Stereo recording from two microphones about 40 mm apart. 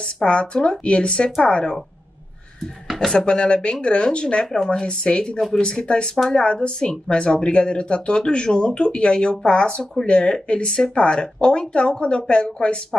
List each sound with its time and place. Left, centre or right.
0.0 s speech: left
3.2 s speech: left